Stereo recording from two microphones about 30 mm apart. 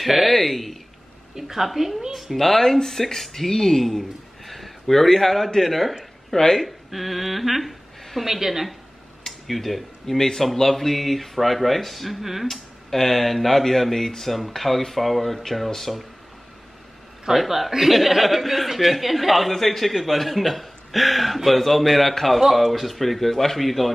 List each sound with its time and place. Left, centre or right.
0.0 s a sound: centre
1.3 s a man's voice: centre
2.3 s a man's voice: centre
6.3 s speech: centre
6.9 s a man's voice: centre
9.2 s a sound: centre
10.1 s a man's voice: centre
12.4 s a man's voice: centre
17.3 s a man's voice: centre
19.9 s a man's voice: centre